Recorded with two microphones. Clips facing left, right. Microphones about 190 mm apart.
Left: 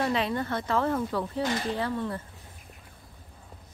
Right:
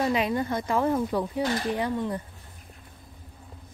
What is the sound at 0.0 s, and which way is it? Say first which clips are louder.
Speech: right 2 dB; 15° right (ahead or behind).